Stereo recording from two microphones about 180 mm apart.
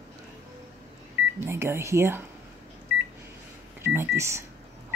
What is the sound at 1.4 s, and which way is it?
Speech, 15° right (ahead or behind).